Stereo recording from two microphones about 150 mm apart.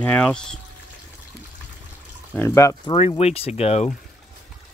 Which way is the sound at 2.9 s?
40° left (ahead or behind).